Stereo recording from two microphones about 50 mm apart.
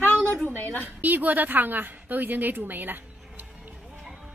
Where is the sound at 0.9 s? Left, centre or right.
Right.